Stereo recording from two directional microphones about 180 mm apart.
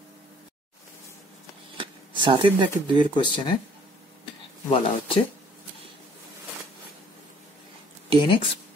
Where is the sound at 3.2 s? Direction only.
25° left (ahead or behind).